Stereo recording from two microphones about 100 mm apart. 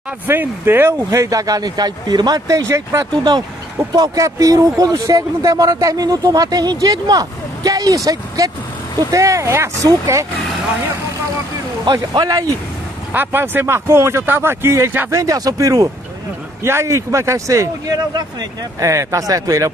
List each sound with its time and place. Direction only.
0.3 s speech: 20° right (ahead or behind)
11.8 s speech: 45° right (ahead or behind)
13.1 s a man's voice: 20° right (ahead or behind)
15.0 s a man's voice: 35° right (ahead or behind)
18.9 s speech: 30° right (ahead or behind)